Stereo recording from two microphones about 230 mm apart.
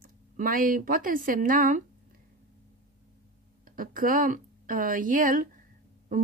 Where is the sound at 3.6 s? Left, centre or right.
Right.